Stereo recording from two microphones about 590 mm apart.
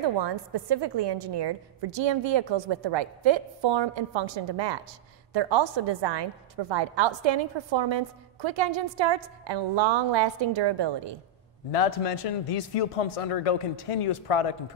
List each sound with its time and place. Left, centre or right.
0.0 s a woman's voice: right
11.7 s a man's voice: left